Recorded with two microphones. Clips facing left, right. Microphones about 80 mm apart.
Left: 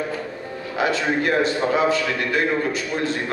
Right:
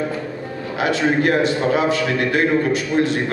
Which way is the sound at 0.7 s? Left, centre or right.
Left.